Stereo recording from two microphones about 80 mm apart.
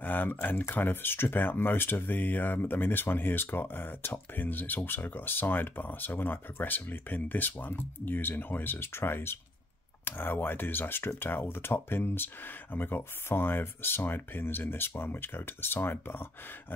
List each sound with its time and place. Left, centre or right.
0.0 s speech: left